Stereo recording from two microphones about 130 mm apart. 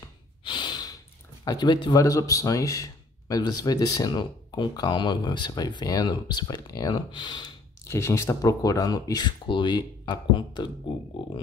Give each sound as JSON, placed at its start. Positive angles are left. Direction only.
{"t": 0.5, "sound": "snort", "side_deg": 35}
{"t": 1.4, "sound": "a man's voice", "side_deg": 30}
{"t": 7.9, "sound": "speech", "side_deg": 25}